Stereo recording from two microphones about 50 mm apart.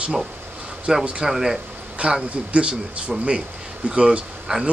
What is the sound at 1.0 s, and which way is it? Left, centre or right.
Speech, right.